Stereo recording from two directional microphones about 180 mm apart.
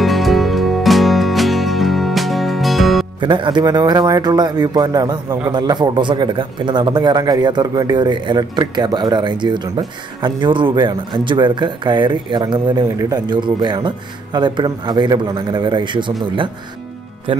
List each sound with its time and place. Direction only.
0.0 s music: centre (ahead or behind)
3.2 s a man's voice: 25° right (ahead or behind)